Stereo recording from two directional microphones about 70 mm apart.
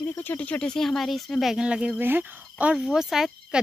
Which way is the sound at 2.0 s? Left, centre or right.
Right.